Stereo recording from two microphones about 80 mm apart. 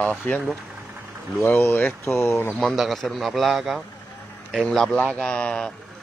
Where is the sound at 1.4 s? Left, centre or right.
Left.